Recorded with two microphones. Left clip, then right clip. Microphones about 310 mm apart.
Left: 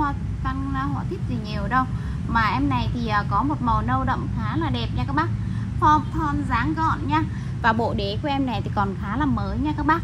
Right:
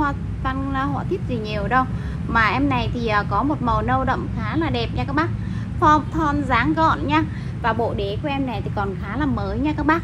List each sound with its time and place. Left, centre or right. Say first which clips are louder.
0.0 s a sound: right 3 dB; centre
2.3 s a woman's voice: right 3 dB; centre
7.6 s a woman's voice: even; left
9.1 s a woman's voice: right 1 dB; centre